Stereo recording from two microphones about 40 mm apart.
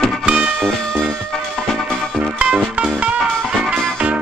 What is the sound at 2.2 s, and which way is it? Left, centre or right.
Music, right.